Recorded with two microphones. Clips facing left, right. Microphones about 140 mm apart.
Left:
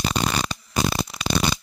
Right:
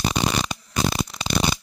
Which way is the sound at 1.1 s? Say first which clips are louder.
Left 2 dB; 5° left (ahead or behind).